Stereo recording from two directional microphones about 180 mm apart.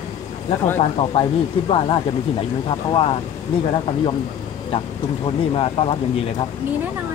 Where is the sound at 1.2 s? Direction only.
30° left (ahead or behind).